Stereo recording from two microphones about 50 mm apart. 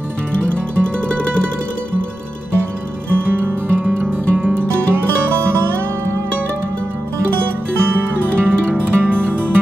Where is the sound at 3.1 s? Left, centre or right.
Right.